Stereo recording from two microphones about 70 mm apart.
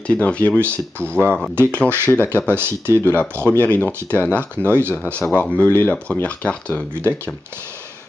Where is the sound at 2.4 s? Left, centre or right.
Right.